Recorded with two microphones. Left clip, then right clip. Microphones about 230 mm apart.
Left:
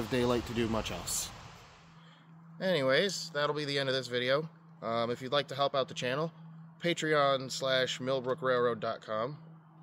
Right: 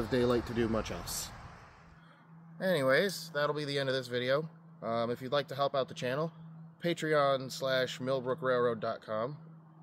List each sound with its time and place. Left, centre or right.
0.1 s speech: left
2.6 s speech: centre